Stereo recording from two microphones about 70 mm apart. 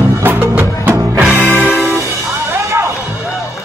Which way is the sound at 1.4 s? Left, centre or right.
Left.